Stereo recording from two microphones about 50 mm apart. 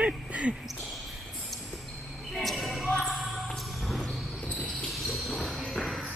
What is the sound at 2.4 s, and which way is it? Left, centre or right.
Basketball bounce, centre.